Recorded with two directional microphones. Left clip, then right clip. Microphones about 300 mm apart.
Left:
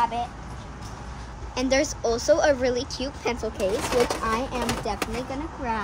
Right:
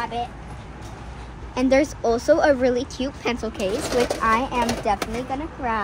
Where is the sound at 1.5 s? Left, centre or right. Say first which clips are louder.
Right 4 dB; right.